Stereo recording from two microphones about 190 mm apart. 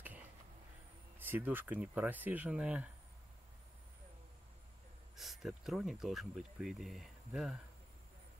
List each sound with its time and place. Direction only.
1.1 s speech: 10° right (ahead or behind)
5.1 s speech: centre (ahead or behind)